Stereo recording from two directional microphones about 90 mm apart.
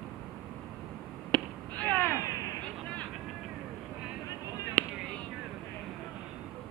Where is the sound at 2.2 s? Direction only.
40° left (ahead or behind).